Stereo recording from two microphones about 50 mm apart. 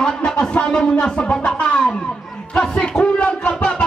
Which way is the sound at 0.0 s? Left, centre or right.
Centre.